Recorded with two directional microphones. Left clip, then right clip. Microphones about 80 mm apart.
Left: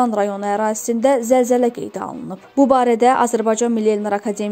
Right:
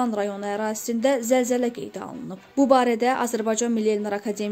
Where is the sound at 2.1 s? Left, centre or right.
Left.